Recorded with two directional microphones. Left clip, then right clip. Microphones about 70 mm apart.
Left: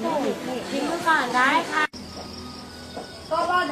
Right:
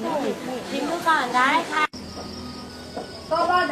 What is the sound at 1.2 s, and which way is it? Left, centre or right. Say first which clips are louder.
Speech: even; right.